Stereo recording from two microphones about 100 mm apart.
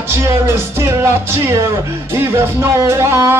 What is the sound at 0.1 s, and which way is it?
Speech, 25° right (ahead or behind).